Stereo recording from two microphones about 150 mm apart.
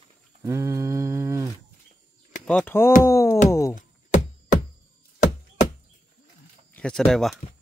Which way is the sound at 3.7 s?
60° left (ahead or behind).